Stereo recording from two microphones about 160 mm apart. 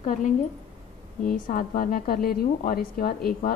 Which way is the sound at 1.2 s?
55° left (ahead or behind).